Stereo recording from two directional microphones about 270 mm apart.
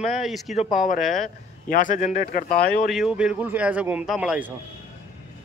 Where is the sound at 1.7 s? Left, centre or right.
Left.